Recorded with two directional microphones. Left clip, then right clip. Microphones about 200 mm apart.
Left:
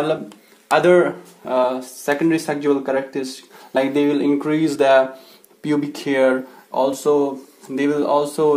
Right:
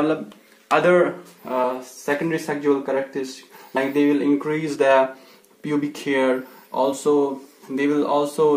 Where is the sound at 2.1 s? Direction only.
35° left (ahead or behind).